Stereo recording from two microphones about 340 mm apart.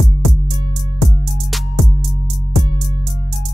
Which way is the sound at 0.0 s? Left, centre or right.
Centre.